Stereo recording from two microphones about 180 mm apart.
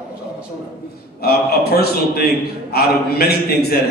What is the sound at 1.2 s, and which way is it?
A man's voice, 60° left (ahead or behind).